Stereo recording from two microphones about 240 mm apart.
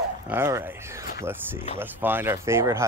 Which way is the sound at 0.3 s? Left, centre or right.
Centre.